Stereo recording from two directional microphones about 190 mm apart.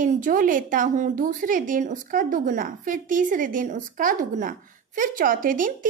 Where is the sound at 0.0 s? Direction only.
45° right (ahead or behind).